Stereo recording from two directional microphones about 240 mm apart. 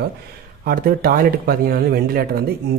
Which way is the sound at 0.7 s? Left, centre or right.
Right.